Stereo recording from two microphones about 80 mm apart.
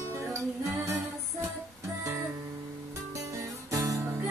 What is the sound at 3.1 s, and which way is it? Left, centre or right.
Music, right.